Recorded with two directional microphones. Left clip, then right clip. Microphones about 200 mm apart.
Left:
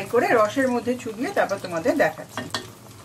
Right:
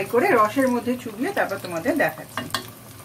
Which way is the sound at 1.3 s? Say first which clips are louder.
Left 2 dB; 20° left (ahead or behind).